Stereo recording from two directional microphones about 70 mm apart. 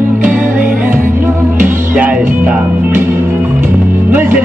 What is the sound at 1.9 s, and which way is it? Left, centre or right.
Speech, centre.